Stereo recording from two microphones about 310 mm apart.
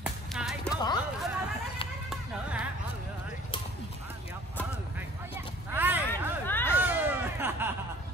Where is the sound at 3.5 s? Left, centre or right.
Centre.